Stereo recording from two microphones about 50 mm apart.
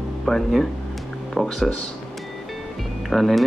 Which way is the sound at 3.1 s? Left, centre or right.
Centre.